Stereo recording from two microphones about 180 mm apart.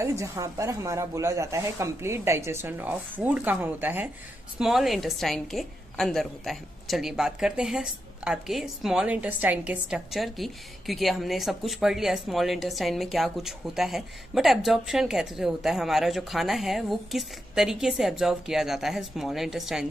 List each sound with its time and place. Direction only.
0.0 s a woman's voice: 15° right (ahead or behind)